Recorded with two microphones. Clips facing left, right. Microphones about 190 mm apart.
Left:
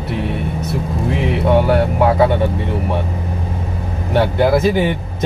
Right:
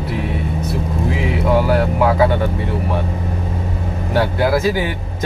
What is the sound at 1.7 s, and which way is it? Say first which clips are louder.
Speech: left 1 dB; 25° left (ahead or behind).